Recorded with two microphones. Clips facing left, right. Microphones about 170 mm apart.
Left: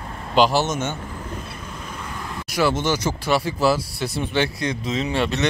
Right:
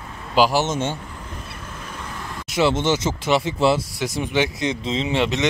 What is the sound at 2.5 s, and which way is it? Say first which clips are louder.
Speech: right 2 dB; 25° right (ahead or behind).